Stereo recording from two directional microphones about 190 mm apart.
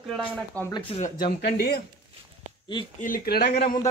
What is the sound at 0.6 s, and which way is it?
Speech, 15° right (ahead or behind).